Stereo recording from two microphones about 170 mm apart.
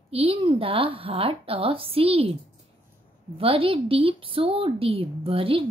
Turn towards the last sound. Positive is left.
turn(degrees=-35)  # may be behind; listen again after turning